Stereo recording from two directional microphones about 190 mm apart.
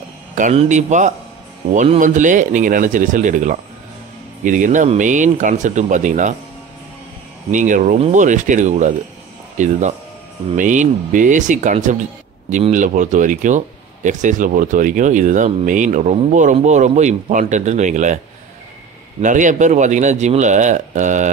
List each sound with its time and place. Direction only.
0.4 s speech: 40° right (ahead or behind)
7.5 s speech: 40° right (ahead or behind)
19.2 s speech: 40° right (ahead or behind)